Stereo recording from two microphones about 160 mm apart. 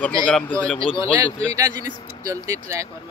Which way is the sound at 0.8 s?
35° left (ahead or behind).